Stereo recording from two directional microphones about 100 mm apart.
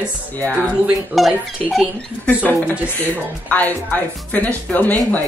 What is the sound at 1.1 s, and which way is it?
Speech, centre (ahead or behind).